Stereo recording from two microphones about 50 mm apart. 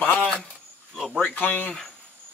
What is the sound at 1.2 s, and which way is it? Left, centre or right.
Speech, left.